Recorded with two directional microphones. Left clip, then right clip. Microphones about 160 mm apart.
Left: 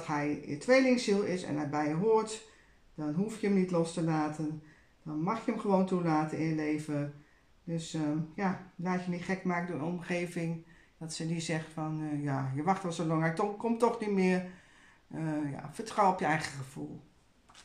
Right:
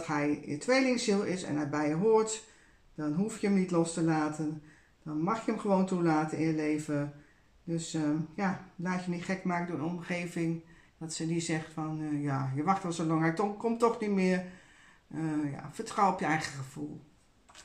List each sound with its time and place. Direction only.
0.0 s speech: 20° left (ahead or behind)